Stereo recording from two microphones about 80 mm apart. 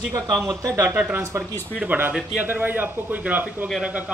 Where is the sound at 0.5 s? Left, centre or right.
Right.